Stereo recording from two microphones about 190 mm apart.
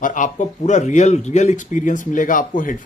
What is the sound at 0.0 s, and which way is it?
A man's voice, 40° left (ahead or behind).